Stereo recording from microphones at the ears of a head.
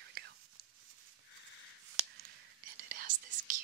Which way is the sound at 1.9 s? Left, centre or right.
Right.